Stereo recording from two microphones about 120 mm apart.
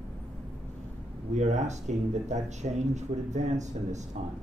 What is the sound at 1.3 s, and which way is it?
Speech, 75° right (ahead or behind).